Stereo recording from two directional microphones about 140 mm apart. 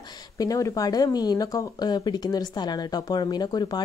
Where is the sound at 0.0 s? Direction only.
25° left (ahead or behind).